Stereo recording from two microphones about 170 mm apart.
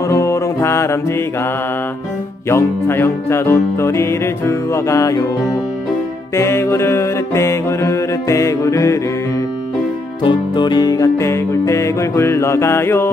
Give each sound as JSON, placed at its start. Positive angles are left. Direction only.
{"t": 0.1, "sound": "music", "side_deg": 15}
{"t": 2.5, "sound": "music", "side_deg": 15}
{"t": 10.2, "sound": "music", "side_deg": 25}